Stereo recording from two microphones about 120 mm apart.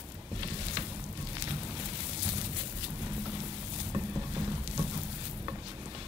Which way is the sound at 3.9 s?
30° right (ahead or behind).